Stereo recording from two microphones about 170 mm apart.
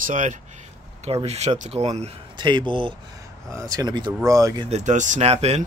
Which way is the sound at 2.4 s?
25° right (ahead or behind).